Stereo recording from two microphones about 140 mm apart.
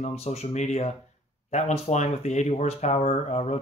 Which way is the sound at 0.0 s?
50° left (ahead or behind).